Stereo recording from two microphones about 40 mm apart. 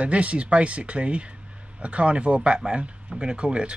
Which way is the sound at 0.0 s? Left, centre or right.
Right.